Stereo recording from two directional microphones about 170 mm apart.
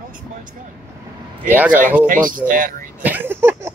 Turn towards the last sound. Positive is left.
turn(degrees=-15)  # may be behind; listen again after turning